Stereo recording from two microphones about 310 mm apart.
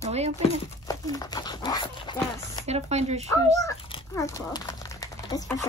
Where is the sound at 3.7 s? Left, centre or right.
Centre.